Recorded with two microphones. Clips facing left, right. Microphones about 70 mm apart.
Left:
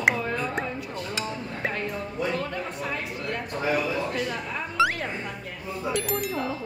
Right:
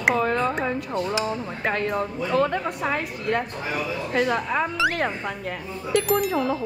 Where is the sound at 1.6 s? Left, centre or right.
Right.